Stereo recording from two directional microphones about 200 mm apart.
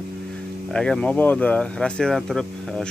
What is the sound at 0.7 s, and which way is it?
Speech, 5° left (ahead or behind).